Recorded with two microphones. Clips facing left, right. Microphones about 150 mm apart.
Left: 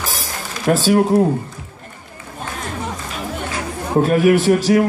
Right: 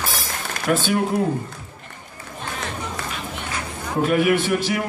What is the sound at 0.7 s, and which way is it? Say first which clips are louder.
Speech: left 6 dB; 35° left (ahead or behind).